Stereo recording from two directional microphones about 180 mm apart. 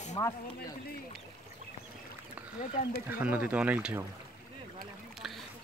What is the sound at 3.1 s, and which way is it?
Speech, 10° right (ahead or behind).